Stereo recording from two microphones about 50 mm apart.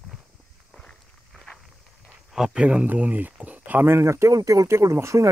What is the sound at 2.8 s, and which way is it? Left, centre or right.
Speech, right.